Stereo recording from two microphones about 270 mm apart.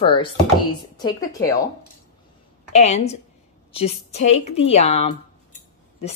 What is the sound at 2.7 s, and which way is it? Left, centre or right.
A woman's voice, left.